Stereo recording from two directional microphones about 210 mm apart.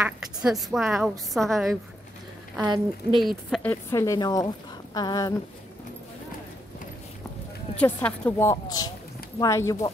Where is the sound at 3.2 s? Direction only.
5° left (ahead or behind).